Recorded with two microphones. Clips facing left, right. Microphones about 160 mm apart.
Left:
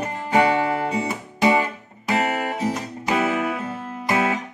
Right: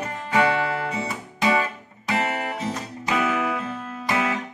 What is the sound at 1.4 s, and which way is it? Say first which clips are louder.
Guitar: left 3 dB; 25° left (ahead or behind).